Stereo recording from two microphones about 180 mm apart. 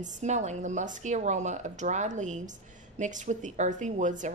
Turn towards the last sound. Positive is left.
turn(degrees=-45)  # may be behind; listen again after turning